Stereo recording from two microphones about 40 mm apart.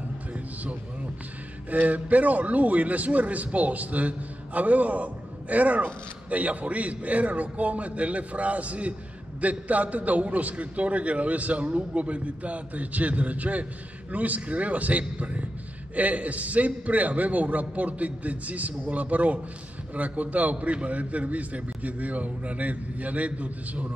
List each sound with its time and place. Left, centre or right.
1.7 s a man's voice: right